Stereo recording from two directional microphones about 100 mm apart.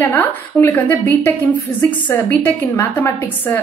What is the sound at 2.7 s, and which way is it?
Speech, 20° left (ahead or behind).